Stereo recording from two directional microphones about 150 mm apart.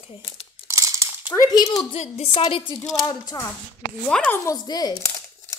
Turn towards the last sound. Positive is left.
turn(degrees=25)  # may be behind; listen again after turning